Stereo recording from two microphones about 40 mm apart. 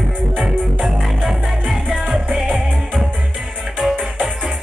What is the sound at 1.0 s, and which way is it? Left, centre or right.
Music, centre.